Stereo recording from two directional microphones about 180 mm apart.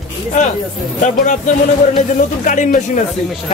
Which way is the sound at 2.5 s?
45° left (ahead or behind).